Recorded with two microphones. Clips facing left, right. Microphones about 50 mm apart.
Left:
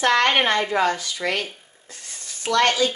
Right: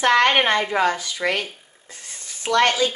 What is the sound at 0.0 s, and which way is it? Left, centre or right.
Speech, centre.